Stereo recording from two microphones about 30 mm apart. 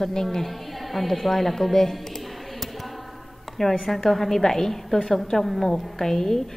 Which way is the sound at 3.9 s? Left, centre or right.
Centre.